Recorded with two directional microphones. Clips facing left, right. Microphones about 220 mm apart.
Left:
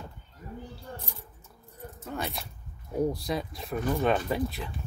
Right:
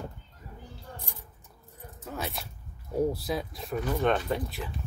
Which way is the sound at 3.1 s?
Centre (ahead or behind).